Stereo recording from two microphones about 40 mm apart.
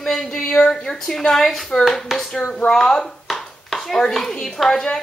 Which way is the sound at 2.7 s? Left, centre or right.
Centre.